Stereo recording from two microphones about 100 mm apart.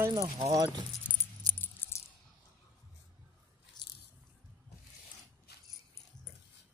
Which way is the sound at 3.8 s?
45° left (ahead or behind).